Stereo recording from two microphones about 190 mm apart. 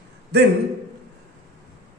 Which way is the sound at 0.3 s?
60° right (ahead or behind).